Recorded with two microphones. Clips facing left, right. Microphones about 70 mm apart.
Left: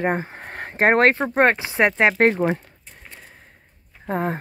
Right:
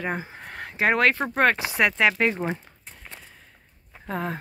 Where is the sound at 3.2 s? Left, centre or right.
Left.